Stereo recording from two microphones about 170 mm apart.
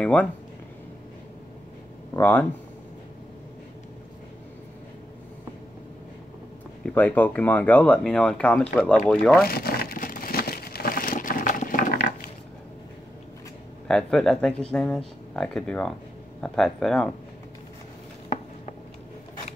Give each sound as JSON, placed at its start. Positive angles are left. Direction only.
{"t": 0.0, "sound": "speech", "side_deg": 5}
{"t": 2.1, "sound": "speech", "side_deg": 10}
{"t": 6.8, "sound": "speech", "side_deg": 10}
{"t": 9.5, "sound": "crumpling", "side_deg": 65}
{"t": 13.8, "sound": "speech", "side_deg": 5}